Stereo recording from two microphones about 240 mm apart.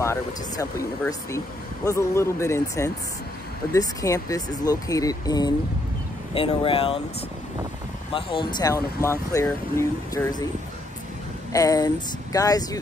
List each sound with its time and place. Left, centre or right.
0.0 s speech: centre
8.1 s speech: left
11.5 s speech: centre